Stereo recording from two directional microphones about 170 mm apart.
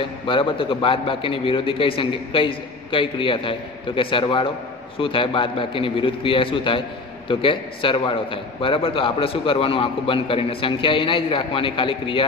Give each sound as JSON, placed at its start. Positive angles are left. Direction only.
{"t": 0.0, "sound": "a man's voice", "side_deg": 30}